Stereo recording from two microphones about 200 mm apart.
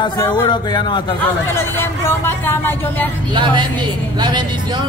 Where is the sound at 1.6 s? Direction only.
10° left (ahead or behind).